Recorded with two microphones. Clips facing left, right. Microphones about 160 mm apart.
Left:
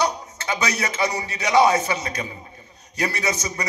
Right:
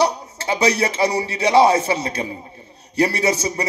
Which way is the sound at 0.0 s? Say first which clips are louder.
Right 4 dB; 30° right (ahead or behind).